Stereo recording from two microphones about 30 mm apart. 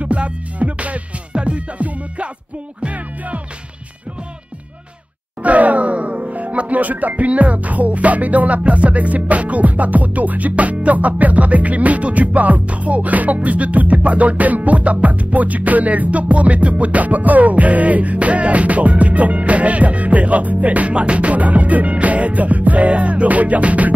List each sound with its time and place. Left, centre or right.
0.0 s music: right
2.8 s music: right
5.4 s music: right
7.2 s music: right
10.5 s music: right
20.9 s music: right